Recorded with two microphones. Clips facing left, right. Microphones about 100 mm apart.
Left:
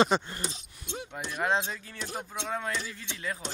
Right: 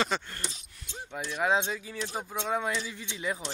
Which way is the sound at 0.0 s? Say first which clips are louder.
Left 5 dB; 20° left (ahead or behind).